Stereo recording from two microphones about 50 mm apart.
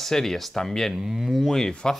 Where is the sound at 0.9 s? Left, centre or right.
Centre.